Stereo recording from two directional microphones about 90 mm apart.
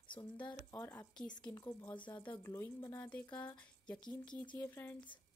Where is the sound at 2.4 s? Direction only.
30° left (ahead or behind).